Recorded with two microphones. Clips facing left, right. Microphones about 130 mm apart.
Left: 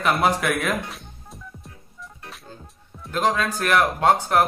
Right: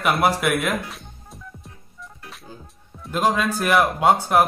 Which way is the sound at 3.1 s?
10° right (ahead or behind).